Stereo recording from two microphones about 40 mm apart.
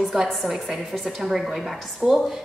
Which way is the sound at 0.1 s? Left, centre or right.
Centre.